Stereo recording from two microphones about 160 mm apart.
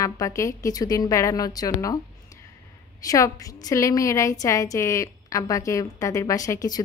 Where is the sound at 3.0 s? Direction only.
20° left (ahead or behind).